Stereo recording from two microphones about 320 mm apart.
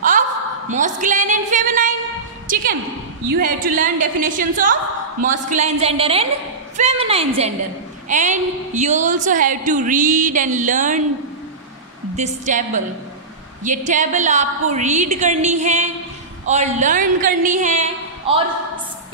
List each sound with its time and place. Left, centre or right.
0.7 s a woman's voice: right
12.2 s a woman's voice: right